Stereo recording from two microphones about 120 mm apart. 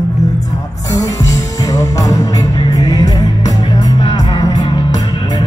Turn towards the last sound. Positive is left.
turn(degrees=40)  # may be behind; listen again after turning